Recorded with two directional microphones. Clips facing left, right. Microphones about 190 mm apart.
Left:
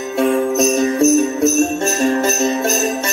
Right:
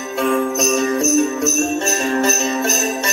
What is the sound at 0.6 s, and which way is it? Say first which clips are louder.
Jingle bell: left 3 dB; 50° left (ahead or behind).